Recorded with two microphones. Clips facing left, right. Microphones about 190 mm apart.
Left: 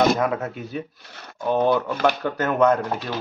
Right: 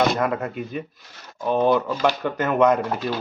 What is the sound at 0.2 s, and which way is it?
Speech, centre (ahead or behind).